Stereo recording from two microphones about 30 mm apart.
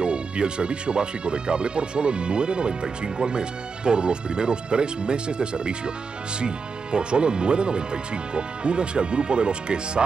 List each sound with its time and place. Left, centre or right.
0.0 s speech: right